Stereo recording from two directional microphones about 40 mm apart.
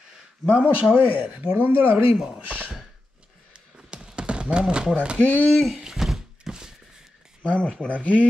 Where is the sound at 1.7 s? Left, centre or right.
Right.